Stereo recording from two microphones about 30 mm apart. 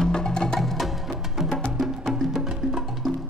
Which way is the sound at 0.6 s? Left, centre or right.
Centre.